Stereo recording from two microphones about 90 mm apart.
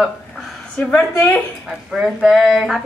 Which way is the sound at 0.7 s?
10° left (ahead or behind).